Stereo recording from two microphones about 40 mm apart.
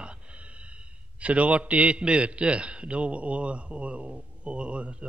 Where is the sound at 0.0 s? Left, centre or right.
Right.